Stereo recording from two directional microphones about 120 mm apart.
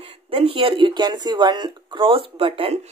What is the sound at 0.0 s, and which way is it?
Speech, 50° right (ahead or behind).